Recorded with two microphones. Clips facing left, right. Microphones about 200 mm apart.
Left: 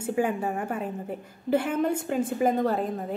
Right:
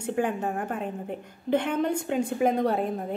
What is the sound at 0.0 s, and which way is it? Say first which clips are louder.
A woman's voice: left 1 dB; 5° left (ahead or behind).